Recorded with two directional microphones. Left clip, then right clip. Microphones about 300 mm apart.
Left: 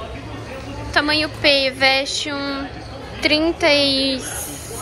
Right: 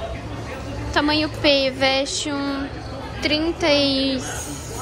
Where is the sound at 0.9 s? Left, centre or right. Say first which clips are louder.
Left 2 dB; centre.